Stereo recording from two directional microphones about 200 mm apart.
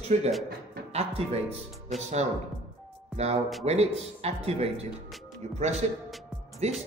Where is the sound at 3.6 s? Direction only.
30° right (ahead or behind).